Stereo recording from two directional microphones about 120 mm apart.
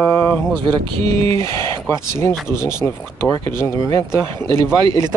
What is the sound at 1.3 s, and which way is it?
Speech, 25° left (ahead or behind).